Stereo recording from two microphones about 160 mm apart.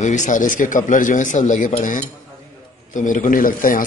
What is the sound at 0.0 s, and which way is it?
A man's voice, 50° left (ahead or behind).